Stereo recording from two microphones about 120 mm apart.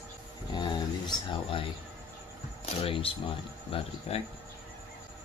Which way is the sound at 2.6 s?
50° left (ahead or behind).